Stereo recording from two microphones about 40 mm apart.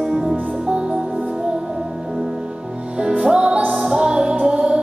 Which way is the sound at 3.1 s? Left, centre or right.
Centre.